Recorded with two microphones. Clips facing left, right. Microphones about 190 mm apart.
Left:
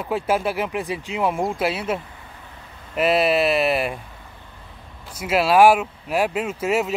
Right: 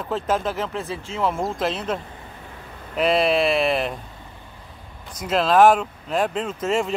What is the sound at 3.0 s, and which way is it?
Speech, 5° left (ahead or behind).